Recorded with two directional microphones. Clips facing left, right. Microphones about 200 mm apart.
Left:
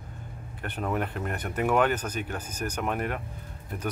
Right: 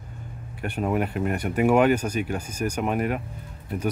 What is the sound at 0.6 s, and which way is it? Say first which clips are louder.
Speech: right 5 dB; 10° right (ahead or behind).